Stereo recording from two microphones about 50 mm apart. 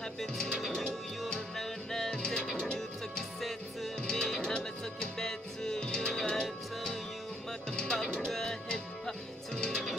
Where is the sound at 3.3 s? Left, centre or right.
Centre.